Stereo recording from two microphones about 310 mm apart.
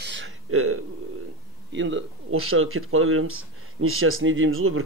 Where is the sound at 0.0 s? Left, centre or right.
Right.